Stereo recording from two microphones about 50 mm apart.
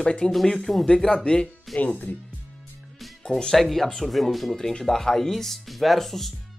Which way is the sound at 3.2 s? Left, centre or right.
Centre.